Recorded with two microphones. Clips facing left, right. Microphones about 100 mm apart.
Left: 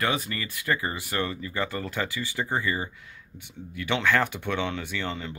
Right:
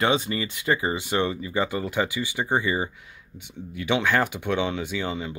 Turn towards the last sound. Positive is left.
turn(degrees=-10)  # may be behind; listen again after turning